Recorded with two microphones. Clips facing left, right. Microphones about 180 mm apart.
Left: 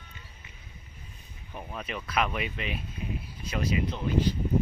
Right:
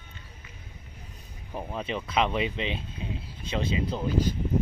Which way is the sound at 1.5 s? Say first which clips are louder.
Right 5 dB; 30° right (ahead or behind).